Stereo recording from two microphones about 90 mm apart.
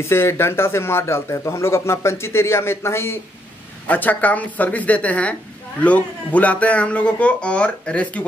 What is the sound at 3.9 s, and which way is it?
A man's voice, 20° left (ahead or behind).